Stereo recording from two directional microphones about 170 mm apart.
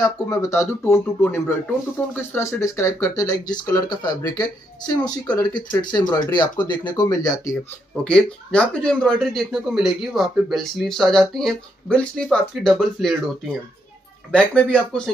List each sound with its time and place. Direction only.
0.0 s speech: 20° left (ahead or behind)
7.9 s speech: 5° left (ahead or behind)